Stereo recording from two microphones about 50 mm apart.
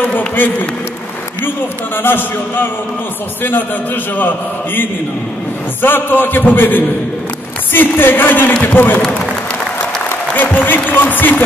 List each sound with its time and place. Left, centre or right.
0.0 s a man's voice: left
2.0 s a man's voice: left
10.3 s speech: left